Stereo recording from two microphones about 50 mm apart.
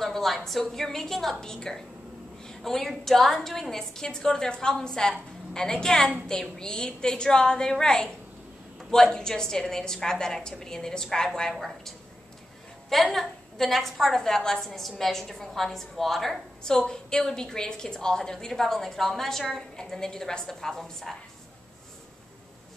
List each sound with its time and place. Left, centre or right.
0.0 s a woman's voice: centre
9.1 s a woman's voice: centre
12.9 s a woman's voice: centre